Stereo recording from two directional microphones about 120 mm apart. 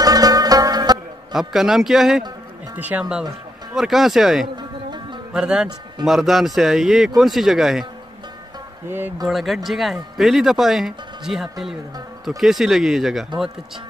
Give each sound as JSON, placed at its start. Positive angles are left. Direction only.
{"t": 0.0, "sound": "music", "side_deg": -30}
{"t": 1.3, "sound": "speech", "side_deg": -5}
{"t": 2.7, "sound": "speech", "side_deg": -15}
{"t": 4.6, "sound": "music", "side_deg": -40}
{"t": 5.3, "sound": "speech", "side_deg": -5}
{"t": 8.8, "sound": "a man's voice", "side_deg": -20}
{"t": 9.3, "sound": "speech", "side_deg": 0}